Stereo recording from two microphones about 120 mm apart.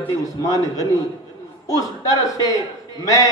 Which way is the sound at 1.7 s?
30° left (ahead or behind).